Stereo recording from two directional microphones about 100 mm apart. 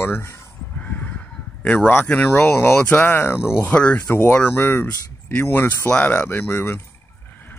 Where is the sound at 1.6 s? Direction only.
15° left (ahead or behind).